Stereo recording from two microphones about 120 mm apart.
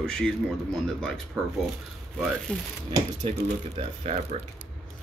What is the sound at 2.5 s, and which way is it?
Speech, 10° left (ahead or behind).